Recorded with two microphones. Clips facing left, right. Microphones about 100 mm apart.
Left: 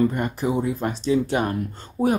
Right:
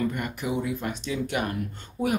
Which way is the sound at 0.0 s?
35° left (ahead or behind).